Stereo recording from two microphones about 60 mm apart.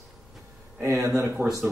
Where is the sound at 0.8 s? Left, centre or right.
Right.